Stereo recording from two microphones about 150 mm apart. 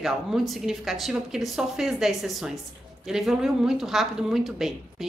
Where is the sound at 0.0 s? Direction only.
5° right (ahead or behind).